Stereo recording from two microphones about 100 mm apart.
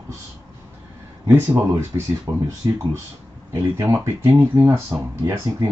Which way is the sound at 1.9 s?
35° right (ahead or behind).